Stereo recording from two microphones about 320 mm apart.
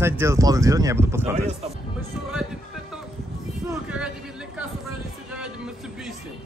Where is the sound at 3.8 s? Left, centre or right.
Centre.